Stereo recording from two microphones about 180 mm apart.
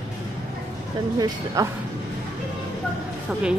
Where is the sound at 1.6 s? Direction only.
20° right (ahead or behind).